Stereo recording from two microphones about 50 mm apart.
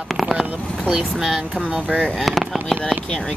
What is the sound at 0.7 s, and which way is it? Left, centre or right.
Speech, centre.